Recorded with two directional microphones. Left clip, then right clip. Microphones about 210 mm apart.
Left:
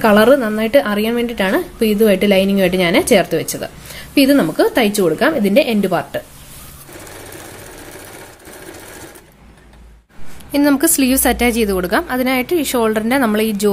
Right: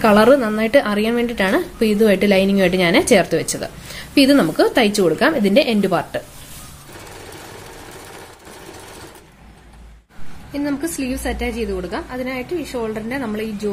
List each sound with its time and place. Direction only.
0.0 s a woman's voice: 5° left (ahead or behind)
10.5 s a woman's voice: 50° left (ahead or behind)